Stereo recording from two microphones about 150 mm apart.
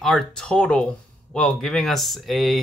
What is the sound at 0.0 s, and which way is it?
Speech, centre (ahead or behind).